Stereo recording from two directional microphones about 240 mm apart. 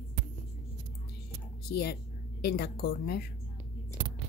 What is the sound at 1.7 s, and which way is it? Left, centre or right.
A woman's voice, left.